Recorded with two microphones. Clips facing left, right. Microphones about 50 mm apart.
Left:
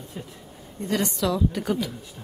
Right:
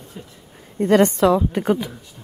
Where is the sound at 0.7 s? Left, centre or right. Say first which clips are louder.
Right 11 dB; right.